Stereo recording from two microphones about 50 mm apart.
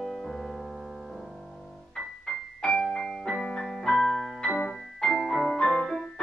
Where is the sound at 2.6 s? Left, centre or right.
Centre.